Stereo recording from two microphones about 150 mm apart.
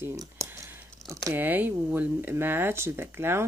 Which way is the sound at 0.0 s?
25° right (ahead or behind).